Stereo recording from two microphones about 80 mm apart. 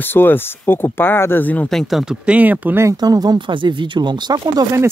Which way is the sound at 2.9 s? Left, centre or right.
Right.